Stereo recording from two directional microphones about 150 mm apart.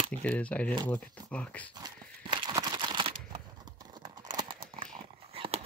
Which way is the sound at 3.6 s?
30° right (ahead or behind).